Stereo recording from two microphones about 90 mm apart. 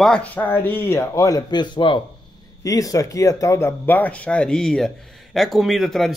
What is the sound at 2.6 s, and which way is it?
Speech, 40° left (ahead or behind).